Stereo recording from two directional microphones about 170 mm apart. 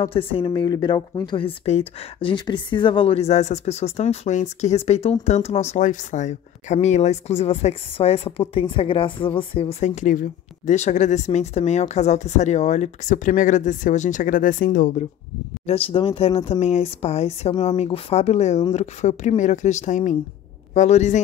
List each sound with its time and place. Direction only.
0.0 s speech: 35° left (ahead or behind); by 15.0 s 55° left (ahead or behind)
15.6 s speech: 35° left (ahead or behind)